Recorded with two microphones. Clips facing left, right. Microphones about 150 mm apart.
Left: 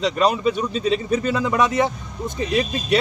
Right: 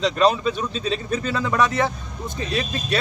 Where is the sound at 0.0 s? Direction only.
10° left (ahead or behind).